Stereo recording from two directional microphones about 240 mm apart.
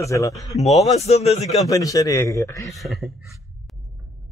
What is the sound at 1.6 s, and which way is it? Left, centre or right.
A man's voice, centre.